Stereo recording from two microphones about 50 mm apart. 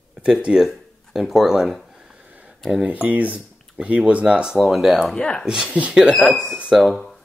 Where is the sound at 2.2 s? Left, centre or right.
Right.